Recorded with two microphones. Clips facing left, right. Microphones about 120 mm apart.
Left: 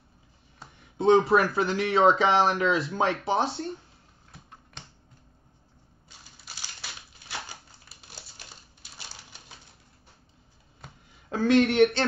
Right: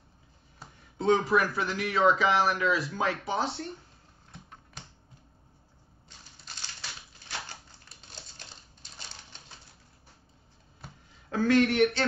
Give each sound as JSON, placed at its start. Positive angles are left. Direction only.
{"t": 0.9, "sound": "speech", "side_deg": 25}
{"t": 6.0, "sound": "typewriter", "side_deg": 10}
{"t": 11.2, "sound": "speech", "side_deg": 25}